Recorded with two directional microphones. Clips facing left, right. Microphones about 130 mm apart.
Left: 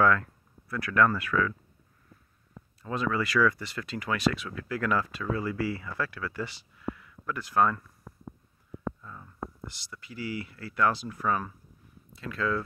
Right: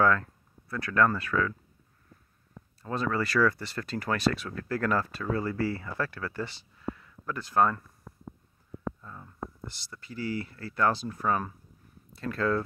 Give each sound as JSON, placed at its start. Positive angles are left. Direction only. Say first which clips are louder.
{"t": 0.0, "sound": "speech", "louder": "left 1 dB", "side_deg": -30}
{"t": 2.8, "sound": "speech", "louder": "even", "side_deg": -35}
{"t": 9.0, "sound": "a sound", "louder": "even", "side_deg": -35}
{"t": 9.8, "sound": "speech", "louder": "right 2 dB", "side_deg": -35}